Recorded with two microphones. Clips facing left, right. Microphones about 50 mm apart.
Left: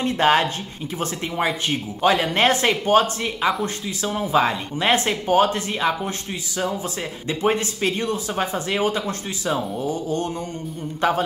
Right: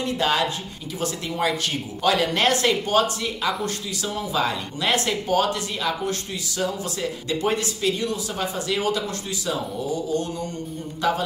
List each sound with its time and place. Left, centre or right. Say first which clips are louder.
0.0 s speech: left 4 dB; left
11.0 s speech: left 3 dB; left